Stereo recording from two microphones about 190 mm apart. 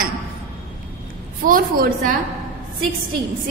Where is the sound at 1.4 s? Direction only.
45° right (ahead or behind).